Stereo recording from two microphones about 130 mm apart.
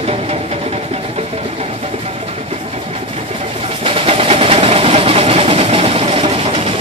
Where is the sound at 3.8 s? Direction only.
45° right (ahead or behind).